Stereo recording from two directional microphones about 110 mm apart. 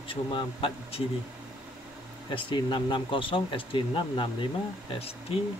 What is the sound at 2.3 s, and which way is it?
Speech, 45° left (ahead or behind).